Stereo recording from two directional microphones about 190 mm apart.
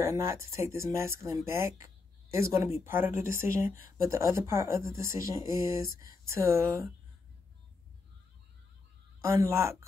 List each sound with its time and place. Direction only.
0.0 s speech: 15° right (ahead or behind)
9.2 s speech: 15° right (ahead or behind)